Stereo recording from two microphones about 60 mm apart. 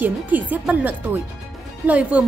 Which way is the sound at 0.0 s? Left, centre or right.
Right.